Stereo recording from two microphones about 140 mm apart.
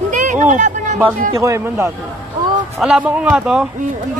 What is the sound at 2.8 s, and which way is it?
Speech, 5° right (ahead or behind).